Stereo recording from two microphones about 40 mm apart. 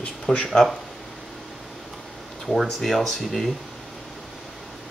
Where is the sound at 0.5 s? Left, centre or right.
Centre.